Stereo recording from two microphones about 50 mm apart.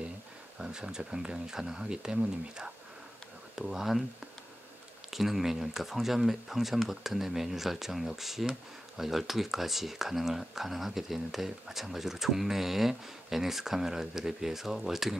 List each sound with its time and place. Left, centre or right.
0.6 s speech: centre